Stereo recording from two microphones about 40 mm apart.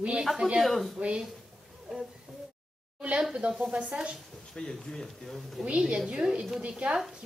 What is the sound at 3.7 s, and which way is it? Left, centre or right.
Speech, right.